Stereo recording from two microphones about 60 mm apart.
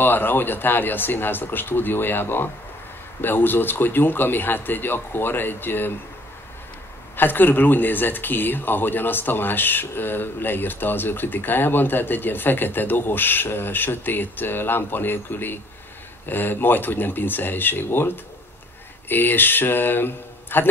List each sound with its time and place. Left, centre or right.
0.0 s speech: left
7.2 s speech: left